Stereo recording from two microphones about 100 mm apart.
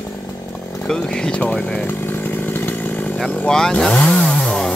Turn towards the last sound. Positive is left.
turn(degrees=5)  # may be behind; listen again after turning